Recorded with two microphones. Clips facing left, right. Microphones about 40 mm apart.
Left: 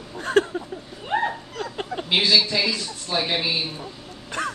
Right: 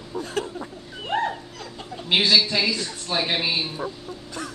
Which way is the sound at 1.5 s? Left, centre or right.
Left.